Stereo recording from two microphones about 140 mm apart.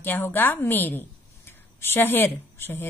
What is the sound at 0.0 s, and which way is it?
A woman's voice, 15° left (ahead or behind).